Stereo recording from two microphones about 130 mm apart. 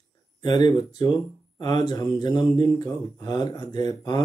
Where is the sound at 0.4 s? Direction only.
30° left (ahead or behind).